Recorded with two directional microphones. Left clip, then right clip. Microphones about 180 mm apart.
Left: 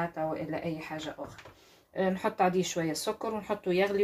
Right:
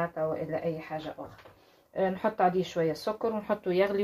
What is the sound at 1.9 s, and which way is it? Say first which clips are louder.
A woman's voice: right 2 dB; 35° right (ahead or behind).